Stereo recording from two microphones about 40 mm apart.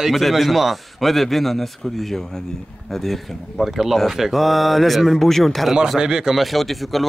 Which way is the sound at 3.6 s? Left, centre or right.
Centre.